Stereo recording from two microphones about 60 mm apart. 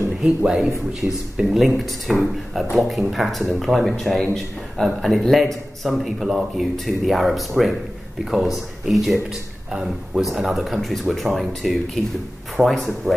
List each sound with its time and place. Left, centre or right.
0.6 s speech: centre